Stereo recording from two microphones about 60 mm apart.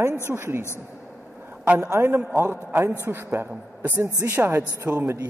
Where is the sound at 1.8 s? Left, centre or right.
Right.